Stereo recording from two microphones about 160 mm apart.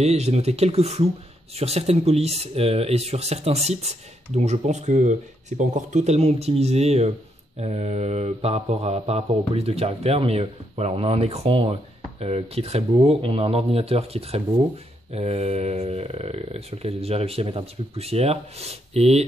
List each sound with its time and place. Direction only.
0.0 s speech: 40° right (ahead or behind)